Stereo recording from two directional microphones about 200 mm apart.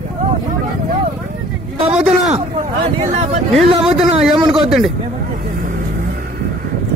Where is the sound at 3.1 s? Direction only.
35° right (ahead or behind).